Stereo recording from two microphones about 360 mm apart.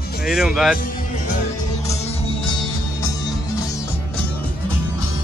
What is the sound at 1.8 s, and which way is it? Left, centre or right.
Music, centre.